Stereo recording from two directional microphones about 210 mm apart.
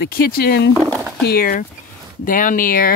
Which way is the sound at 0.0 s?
50° left (ahead or behind).